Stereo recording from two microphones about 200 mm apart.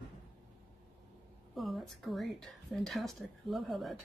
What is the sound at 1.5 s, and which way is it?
Speech, centre (ahead or behind).